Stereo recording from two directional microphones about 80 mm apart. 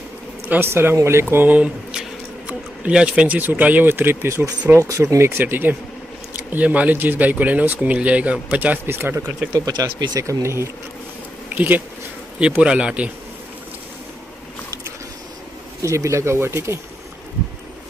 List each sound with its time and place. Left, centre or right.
0.5 s speech: right
1.3 s speech: right
4.7 s speech: right; by 8.7 s centre
8.8 s speech: right
9.9 s speech: right
10.2 s speech: right
11.5 s speech: right
15.8 s speech: right